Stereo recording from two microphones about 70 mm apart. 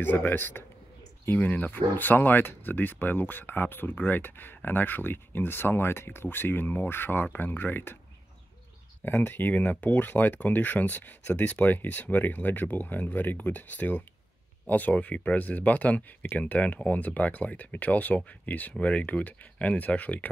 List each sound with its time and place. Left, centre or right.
0.0 s speech: left
9.0 s speech: left